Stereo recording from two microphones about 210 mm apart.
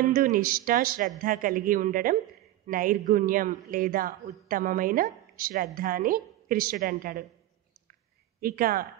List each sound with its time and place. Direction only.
0.1 s a man's voice: 45° right (ahead or behind)
8.4 s speech: 45° right (ahead or behind)